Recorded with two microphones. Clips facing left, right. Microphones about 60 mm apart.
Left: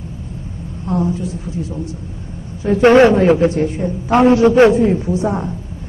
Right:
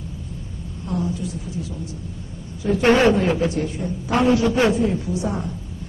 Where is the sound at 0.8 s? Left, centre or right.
Left.